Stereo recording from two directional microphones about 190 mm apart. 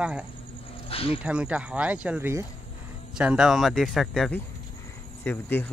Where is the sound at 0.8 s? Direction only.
30° left (ahead or behind).